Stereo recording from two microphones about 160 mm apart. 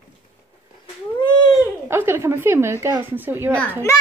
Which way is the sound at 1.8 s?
15° right (ahead or behind).